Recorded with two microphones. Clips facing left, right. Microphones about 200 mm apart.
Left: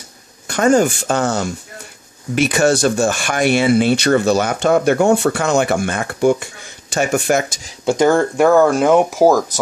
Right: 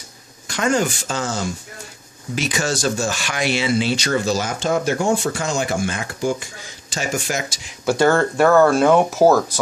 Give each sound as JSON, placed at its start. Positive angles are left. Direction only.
{"t": 0.5, "sound": "speech", "side_deg": 45}
{"t": 7.8, "sound": "speech", "side_deg": 20}